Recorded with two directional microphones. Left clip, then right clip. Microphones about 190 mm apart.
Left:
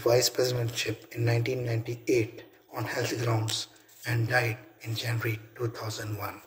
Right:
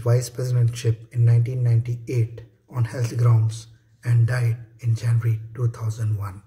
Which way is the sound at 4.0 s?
15° right (ahead or behind).